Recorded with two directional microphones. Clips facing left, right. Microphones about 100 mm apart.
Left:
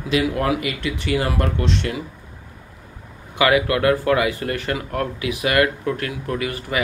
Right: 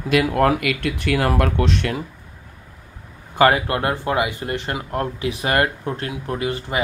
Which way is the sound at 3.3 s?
35° right (ahead or behind).